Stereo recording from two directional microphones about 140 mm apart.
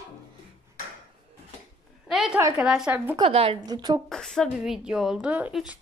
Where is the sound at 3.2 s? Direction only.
40° right (ahead or behind).